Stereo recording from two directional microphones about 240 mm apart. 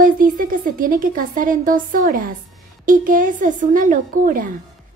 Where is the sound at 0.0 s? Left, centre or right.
Right.